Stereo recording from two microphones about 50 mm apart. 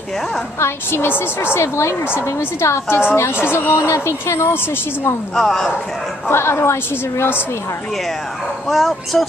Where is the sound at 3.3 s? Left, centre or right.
Left.